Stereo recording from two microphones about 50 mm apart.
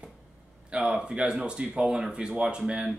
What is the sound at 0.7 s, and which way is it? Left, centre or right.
Speech, centre.